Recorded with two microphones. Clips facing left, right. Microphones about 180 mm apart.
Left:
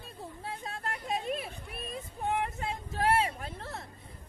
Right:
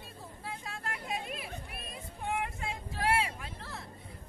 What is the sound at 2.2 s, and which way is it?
Vehicle, 40° left (ahead or behind).